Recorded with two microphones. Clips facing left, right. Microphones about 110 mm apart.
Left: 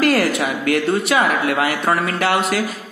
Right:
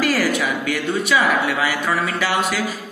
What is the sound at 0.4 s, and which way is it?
Speech, 45° left (ahead or behind).